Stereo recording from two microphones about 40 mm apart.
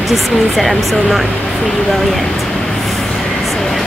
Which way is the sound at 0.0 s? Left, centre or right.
Centre.